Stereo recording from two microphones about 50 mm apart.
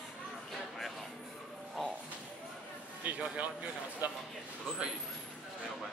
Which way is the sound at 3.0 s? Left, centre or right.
Right.